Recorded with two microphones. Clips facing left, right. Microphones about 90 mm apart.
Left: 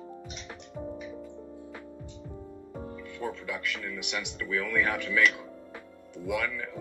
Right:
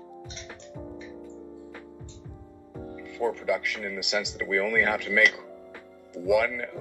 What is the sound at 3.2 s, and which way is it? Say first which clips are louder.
Speech: right 8 dB; 15° right (ahead or behind).